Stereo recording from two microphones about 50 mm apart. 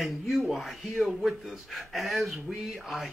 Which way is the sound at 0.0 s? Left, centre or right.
Centre.